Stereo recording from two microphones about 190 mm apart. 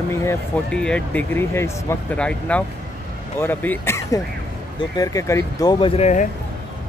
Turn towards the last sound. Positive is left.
turn(degrees=40)  # may be behind; listen again after turning